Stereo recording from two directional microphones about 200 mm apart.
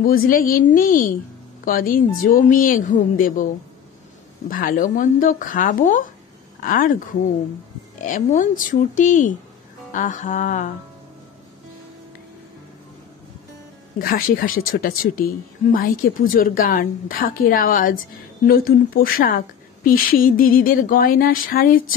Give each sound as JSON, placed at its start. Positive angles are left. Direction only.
{"t": 0.0, "sound": "a woman's voice", "side_deg": 45}
{"t": 4.5, "sound": "a woman's voice", "side_deg": 45}
{"t": 8.0, "sound": "speech", "side_deg": 40}
{"t": 13.9, "sound": "a woman's voice", "side_deg": 45}